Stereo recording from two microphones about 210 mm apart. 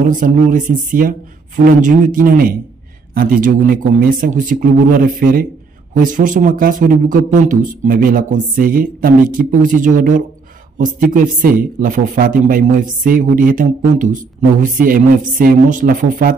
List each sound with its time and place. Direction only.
0.1 s speech: 40° right (ahead or behind)